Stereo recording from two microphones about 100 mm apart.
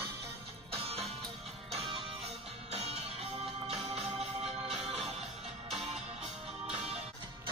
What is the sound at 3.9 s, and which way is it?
Organ, 90° right.